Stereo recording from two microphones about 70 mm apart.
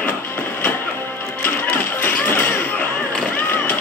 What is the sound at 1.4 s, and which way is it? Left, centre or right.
Music, left.